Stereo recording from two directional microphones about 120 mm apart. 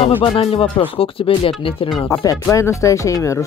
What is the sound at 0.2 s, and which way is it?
Speech, 55° left (ahead or behind).